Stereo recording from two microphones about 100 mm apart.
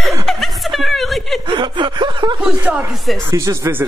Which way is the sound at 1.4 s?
55° right (ahead or behind).